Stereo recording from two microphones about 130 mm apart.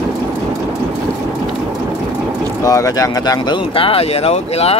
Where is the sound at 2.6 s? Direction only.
25° left (ahead or behind).